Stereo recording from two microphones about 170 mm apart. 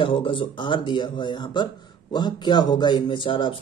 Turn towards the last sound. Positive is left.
turn(degrees=30)  # may be behind; listen again after turning